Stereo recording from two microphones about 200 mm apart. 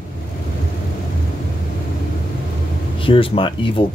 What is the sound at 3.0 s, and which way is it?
Speech, 25° left (ahead or behind).